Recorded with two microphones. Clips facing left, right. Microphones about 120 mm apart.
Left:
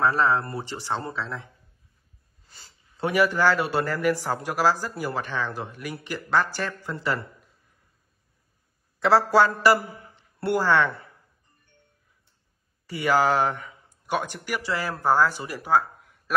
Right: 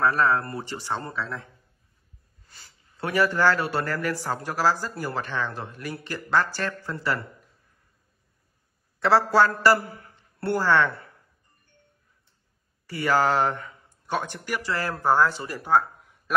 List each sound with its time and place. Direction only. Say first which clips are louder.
0.0 s a man's voice: even; 20° left (ahead or behind)
9.0 s a woman's voice: left 1 dB; 15° left (ahead or behind)
12.8 s speech: left 1 dB; 15° left (ahead or behind)
13.3 s speech: even; 5° left (ahead or behind)
13.7 s a sound: left 2 dB; 10° left (ahead or behind)
14.7 s speech: even; 15° left (ahead or behind)
15.0 s speech: even; 5° left (ahead or behind)